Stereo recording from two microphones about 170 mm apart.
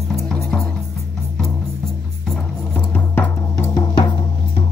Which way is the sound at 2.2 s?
5° left (ahead or behind).